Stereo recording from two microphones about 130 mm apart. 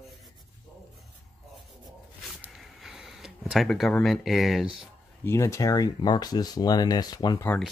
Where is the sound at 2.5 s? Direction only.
5° right (ahead or behind).